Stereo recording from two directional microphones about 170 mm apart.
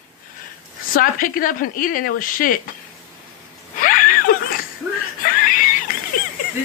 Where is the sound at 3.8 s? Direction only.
55° left (ahead or behind).